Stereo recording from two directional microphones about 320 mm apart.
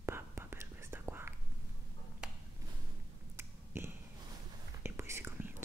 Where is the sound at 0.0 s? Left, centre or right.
Centre.